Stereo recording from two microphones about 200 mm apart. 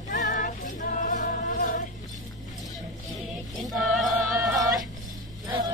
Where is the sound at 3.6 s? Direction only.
Centre (ahead or behind).